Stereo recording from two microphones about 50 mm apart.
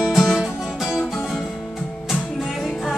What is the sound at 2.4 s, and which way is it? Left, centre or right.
Music, centre.